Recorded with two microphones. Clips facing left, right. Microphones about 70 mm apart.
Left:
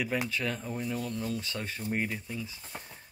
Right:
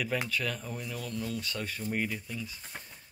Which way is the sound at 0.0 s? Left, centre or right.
Left.